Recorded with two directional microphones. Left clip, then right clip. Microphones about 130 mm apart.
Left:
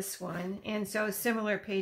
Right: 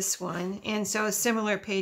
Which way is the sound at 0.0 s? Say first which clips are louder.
Right 6 dB; 40° right (ahead or behind).